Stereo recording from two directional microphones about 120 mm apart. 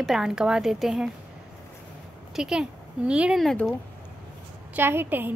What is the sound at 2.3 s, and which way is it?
Speech, 5° right (ahead or behind).